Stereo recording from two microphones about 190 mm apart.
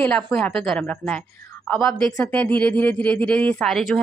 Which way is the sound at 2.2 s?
5° left (ahead or behind).